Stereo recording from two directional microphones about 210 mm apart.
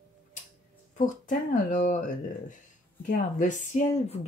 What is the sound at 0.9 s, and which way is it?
Speech, 35° left (ahead or behind).